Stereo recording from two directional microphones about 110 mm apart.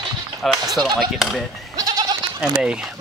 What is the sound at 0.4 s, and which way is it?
Speech, centre (ahead or behind).